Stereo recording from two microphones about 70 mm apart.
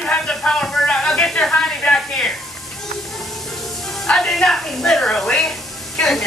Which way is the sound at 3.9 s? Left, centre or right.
Centre.